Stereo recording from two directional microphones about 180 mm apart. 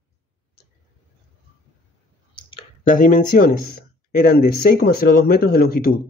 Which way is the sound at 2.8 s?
45° left (ahead or behind).